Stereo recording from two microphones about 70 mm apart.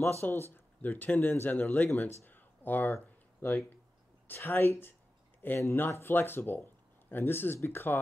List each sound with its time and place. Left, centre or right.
0.0 s speech: left